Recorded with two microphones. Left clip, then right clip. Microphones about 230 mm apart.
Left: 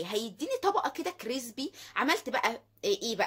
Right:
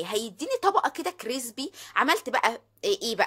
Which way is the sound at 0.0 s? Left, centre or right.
Right.